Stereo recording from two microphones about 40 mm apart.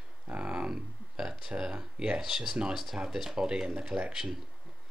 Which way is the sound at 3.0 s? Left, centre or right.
Right.